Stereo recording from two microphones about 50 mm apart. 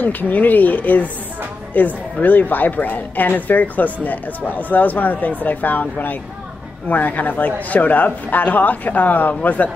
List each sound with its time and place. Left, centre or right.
0.0 s speech: left